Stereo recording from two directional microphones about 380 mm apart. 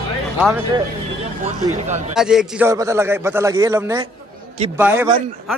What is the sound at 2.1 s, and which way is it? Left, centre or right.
A man's voice, centre.